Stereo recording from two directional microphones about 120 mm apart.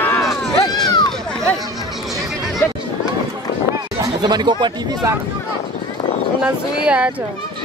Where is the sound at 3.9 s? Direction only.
35° right (ahead or behind).